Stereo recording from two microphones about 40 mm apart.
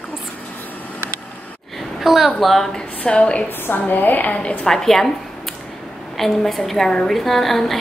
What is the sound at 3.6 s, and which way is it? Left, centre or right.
Speech, left.